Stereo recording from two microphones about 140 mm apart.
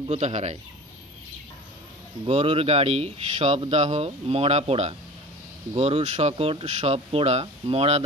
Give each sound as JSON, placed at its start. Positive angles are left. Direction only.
{"t": 0.1, "sound": "speech", "side_deg": -50}
{"t": 2.2, "sound": "speech", "side_deg": -40}